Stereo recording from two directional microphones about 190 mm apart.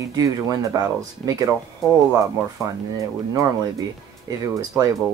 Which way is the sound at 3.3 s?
15° right (ahead or behind).